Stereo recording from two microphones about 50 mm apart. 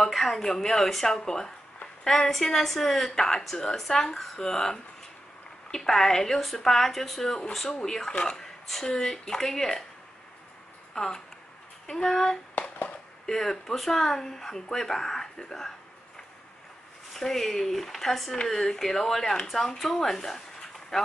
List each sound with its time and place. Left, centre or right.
0.0 s a woman's voice: centre
11.0 s a woman's voice: centre
12.5 s a sound: left
13.3 s a woman's voice: centre
17.1 s a woman's voice: centre